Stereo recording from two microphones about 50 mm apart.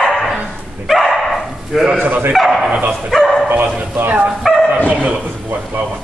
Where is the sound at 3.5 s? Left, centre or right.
Right.